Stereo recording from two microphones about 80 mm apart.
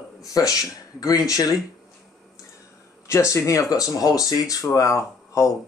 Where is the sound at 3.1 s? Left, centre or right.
Left.